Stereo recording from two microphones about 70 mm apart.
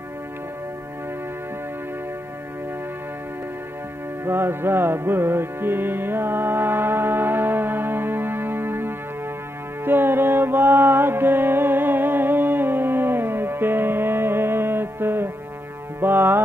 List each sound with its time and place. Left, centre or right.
4.2 s music: right